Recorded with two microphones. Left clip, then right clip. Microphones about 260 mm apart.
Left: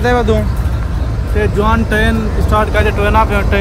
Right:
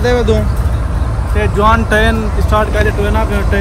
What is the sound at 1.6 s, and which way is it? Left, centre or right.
Speech, centre.